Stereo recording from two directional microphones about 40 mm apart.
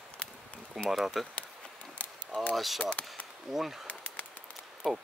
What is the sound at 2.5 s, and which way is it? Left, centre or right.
Speech, centre.